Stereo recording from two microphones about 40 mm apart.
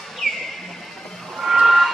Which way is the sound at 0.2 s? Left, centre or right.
Centre.